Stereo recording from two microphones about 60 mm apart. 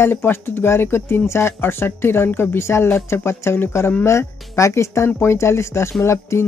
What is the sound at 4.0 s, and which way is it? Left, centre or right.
Speech, left.